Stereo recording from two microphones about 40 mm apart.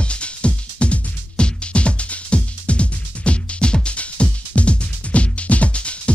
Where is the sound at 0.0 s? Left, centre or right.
Left.